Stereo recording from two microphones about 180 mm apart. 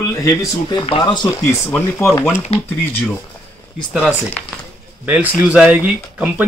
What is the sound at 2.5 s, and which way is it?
Speech, 35° left (ahead or behind).